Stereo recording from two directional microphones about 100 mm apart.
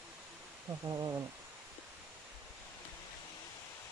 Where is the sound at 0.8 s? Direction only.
35° right (ahead or behind).